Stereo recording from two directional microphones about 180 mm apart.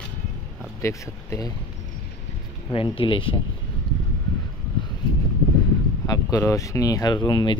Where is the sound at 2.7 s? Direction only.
30° left (ahead or behind).